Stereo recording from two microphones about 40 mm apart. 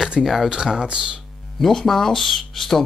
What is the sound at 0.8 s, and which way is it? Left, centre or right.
Speech, centre.